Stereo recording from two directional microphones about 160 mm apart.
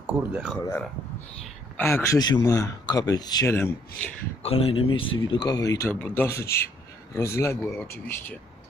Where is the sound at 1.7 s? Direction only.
15° left (ahead or behind).